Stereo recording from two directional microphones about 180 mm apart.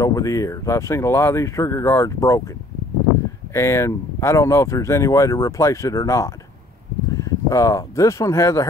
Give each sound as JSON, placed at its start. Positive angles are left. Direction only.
{"t": 0.0, "sound": "speech", "side_deg": 15}
{"t": 3.5, "sound": "speech", "side_deg": 15}